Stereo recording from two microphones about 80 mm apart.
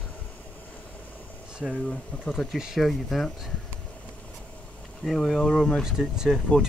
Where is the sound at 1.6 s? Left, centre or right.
Centre.